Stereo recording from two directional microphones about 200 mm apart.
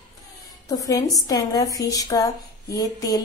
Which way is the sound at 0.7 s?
15° left (ahead or behind).